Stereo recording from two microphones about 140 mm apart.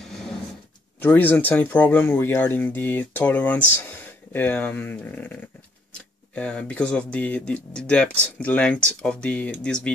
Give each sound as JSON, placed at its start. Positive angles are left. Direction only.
{"t": 1.0, "sound": "speech", "side_deg": 15}